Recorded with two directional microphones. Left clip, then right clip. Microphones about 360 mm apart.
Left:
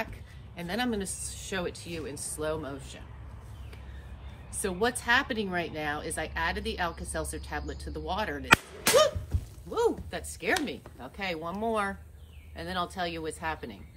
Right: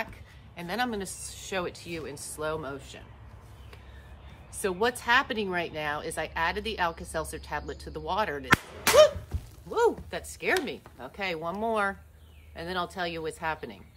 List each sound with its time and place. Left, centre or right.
0.6 s speech: centre
4.6 s speech: centre
9.7 s speech: right